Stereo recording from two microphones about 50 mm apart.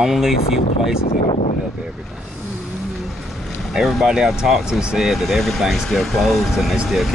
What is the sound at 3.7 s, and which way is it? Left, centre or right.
Speech, centre.